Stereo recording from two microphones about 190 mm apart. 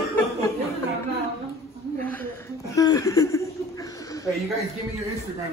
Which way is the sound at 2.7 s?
20° left (ahead or behind).